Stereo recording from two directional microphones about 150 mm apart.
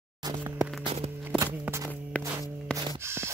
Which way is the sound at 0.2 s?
20° right (ahead or behind).